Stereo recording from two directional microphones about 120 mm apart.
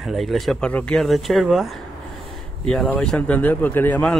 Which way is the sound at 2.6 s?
10° left (ahead or behind).